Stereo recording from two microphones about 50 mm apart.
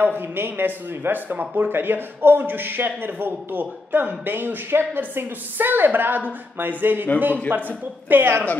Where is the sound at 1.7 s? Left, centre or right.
Right.